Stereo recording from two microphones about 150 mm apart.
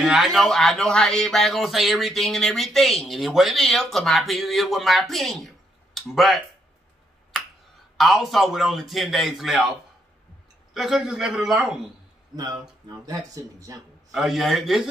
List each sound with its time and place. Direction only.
0.0 s speech: centre (ahead or behind)
8.0 s speech: centre (ahead or behind)
13.0 s speech: 25° right (ahead or behind)
14.1 s speech: centre (ahead or behind)